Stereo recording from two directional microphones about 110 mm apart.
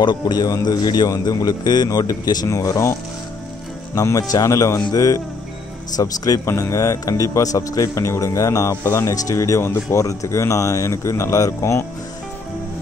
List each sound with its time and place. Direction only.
0.0 s a man's voice: 40° left (ahead or behind)